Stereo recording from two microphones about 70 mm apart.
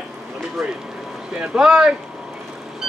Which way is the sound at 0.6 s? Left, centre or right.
Centre.